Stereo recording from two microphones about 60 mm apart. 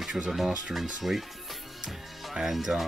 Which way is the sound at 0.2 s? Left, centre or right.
Centre.